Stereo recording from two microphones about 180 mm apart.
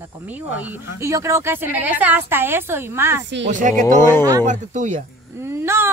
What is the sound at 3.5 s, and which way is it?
Speech, 45° right (ahead or behind).